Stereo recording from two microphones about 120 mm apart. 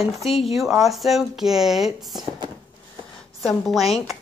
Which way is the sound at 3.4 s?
Centre (ahead or behind).